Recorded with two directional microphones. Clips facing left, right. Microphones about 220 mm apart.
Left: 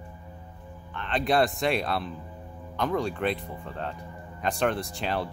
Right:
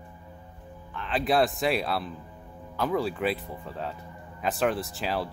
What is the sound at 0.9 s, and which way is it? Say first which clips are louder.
Speech: even; 5° right (ahead or behind).